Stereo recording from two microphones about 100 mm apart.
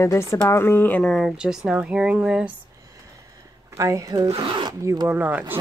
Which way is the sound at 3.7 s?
30° right (ahead or behind).